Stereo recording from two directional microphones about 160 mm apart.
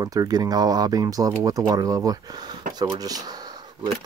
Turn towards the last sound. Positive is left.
turn(degrees=-25)  # may be behind; listen again after turning